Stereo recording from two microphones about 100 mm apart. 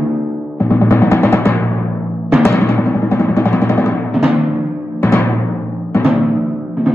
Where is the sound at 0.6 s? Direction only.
30° left (ahead or behind).